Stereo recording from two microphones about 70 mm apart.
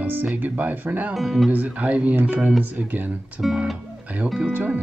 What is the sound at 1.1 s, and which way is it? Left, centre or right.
Speech, centre.